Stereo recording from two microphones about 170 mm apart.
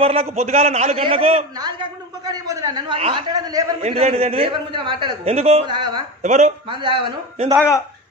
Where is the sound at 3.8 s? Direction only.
35° right (ahead or behind).